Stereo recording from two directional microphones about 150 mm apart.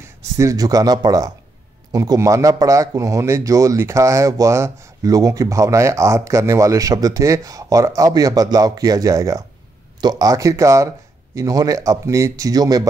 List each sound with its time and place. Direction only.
0.4 s a man's voice: 25° right (ahead or behind)